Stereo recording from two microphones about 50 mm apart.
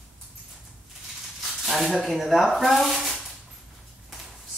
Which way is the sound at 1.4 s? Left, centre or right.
Centre.